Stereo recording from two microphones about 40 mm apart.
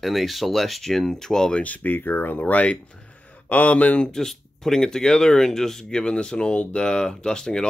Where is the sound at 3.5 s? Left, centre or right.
Left.